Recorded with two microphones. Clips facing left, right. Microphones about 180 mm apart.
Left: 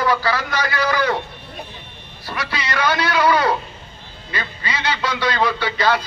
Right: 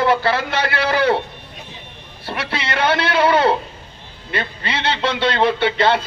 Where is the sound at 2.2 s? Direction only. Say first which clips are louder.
Right 2 dB; 30° right (ahead or behind).